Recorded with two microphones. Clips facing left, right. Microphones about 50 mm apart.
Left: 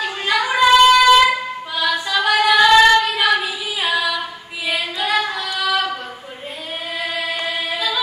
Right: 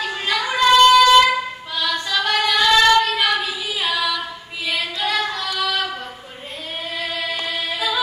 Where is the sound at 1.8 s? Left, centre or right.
Centre.